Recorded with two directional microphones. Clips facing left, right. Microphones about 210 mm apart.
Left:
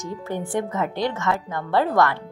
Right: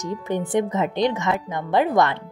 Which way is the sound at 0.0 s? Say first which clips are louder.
Right 3 dB; 20° right (ahead or behind).